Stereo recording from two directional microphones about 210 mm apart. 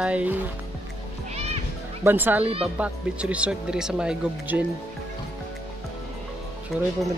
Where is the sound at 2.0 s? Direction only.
10° right (ahead or behind).